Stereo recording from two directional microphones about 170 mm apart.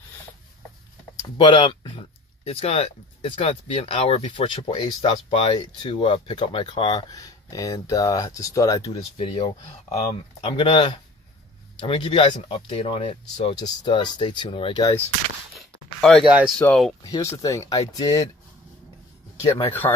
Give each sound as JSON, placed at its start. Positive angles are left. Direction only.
{"t": 1.4, "sound": "speech", "side_deg": 25}
{"t": 9.2, "sound": "speech", "side_deg": 35}
{"t": 15.6, "sound": "a sound", "side_deg": 0}
{"t": 16.3, "sound": "speech", "side_deg": -10}
{"t": 16.5, "sound": "speech", "side_deg": 5}
{"t": 17.0, "sound": "speech", "side_deg": 20}
{"t": 19.6, "sound": "speech", "side_deg": 10}